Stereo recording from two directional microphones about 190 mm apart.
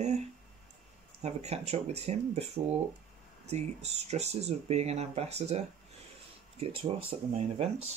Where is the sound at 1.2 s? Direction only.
35° right (ahead or behind).